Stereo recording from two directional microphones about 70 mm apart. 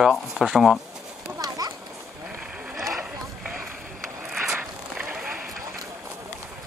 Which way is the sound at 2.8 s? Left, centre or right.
Centre.